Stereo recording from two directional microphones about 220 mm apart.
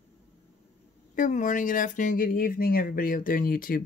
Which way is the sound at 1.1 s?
35° left (ahead or behind).